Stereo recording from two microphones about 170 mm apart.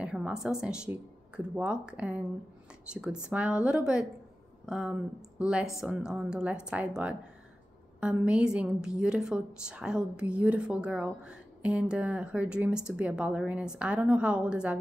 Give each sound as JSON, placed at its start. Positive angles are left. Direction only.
{"t": 0.0, "sound": "a woman's voice", "side_deg": -5}